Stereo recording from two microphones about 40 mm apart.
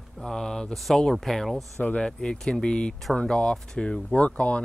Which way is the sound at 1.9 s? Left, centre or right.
Left.